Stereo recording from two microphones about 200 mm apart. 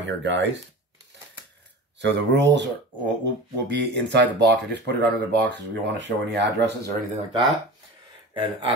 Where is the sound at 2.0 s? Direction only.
60° right (ahead or behind).